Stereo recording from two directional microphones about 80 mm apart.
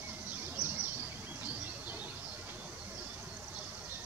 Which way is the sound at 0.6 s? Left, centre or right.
Centre.